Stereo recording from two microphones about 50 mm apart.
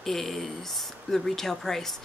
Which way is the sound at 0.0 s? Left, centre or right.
Centre.